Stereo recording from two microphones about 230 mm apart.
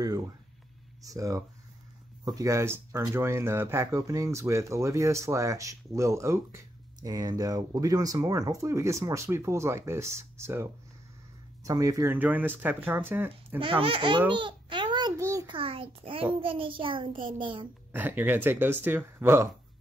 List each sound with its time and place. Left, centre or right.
1.0 s speech: centre
13.6 s a child's voice: right
17.9 s speech: centre